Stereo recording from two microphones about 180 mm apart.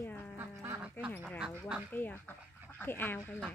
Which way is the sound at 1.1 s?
5° left (ahead or behind).